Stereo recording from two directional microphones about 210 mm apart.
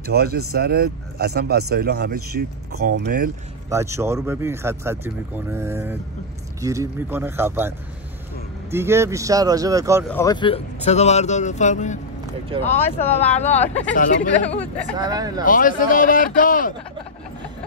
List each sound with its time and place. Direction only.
0.0 s speech: 50° right (ahead or behind)
3.7 s speech: 15° right (ahead or behind)
8.7 s speech: 10° right (ahead or behind)
10.0 s speech: 10° left (ahead or behind)
10.3 s speech: 25° left (ahead or behind)
12.6 s speech: 10° left (ahead or behind)
13.9 s speech: 40° left (ahead or behind)
15.0 s speech: 20° right (ahead or behind)
15.4 s speech: 40° left (ahead or behind)